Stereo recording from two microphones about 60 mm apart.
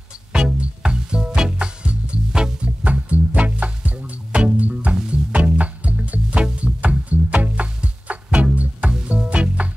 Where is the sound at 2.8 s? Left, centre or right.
Right.